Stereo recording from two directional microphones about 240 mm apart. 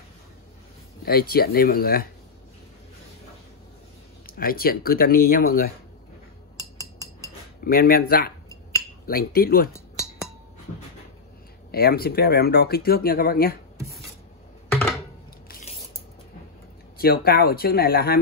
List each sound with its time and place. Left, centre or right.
1.0 s speech: left
4.4 s speech: left
7.6 s speech: left
11.7 s speech: left
14.7 s a sound: centre
15.4 s a sound: left
17.0 s speech: left